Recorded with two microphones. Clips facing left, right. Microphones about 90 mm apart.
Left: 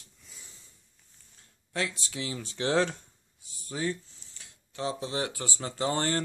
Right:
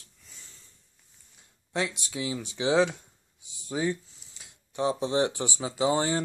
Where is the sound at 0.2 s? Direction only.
Centre (ahead or behind).